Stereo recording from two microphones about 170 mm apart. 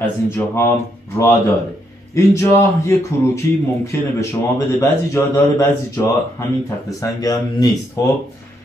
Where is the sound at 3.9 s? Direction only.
15° left (ahead or behind).